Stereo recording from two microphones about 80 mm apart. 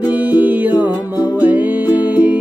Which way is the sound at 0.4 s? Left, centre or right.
Right.